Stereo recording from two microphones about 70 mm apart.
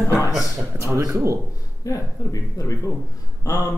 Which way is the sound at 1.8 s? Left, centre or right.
Left.